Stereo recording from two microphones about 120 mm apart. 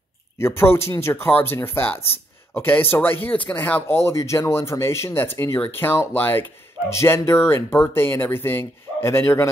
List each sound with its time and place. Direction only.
0.4 s speech: 20° left (ahead or behind)